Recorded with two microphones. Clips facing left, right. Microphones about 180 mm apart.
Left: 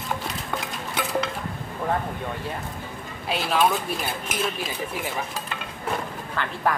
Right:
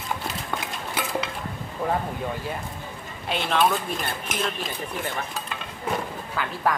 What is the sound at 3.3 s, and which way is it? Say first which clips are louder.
Speech: even; 5° left (ahead or behind).